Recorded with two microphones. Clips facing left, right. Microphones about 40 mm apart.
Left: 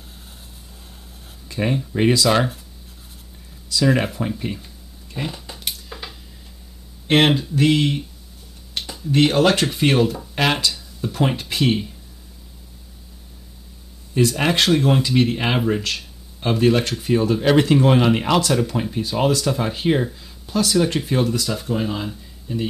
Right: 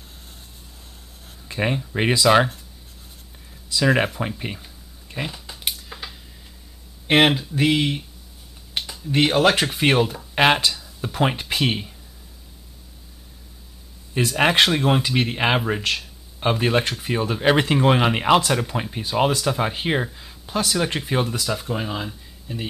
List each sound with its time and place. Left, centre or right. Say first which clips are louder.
1.5 s speech: left 1 dB; right
3.7 s speech: even; centre
4.4 s speech: left 3 dB; centre
5.2 s speech: left 1 dB; centre
5.7 s a sound: right 1 dB; centre
7.1 s speech: left 1 dB; centre
8.8 s a sound: right 1 dB; centre
9.1 s speech: left 1 dB; centre
14.1 s speech: even; right